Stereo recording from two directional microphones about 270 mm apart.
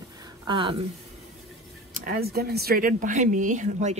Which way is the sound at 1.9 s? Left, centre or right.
Right.